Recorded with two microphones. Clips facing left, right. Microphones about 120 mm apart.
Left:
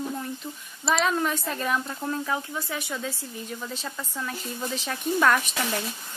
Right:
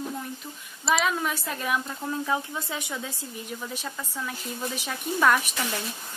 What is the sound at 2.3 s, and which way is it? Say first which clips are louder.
Speech: right 1 dB; 20° right (ahead or behind).